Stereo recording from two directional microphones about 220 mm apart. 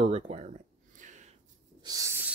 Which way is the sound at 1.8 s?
15° right (ahead or behind).